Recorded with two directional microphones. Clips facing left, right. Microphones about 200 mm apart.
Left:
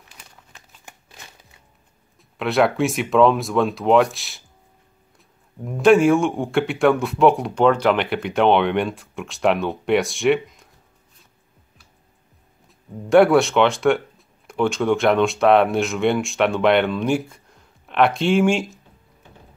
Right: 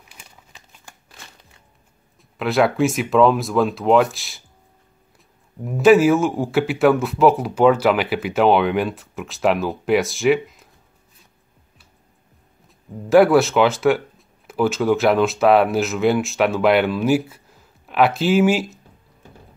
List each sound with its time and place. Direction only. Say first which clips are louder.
0.1 s crumpling: right 1 dB; 10° right (ahead or behind)
0.9 s crumpling: left 1 dB; 20° left (ahead or behind)
2.3 s speech: right 1 dB; centre (ahead or behind)
5.6 s speech: right 1 dB; 5° right (ahead or behind)
12.6 s speech: right 1 dB; centre (ahead or behind)